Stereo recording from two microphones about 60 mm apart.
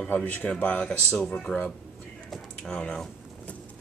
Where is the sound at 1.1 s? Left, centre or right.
Centre.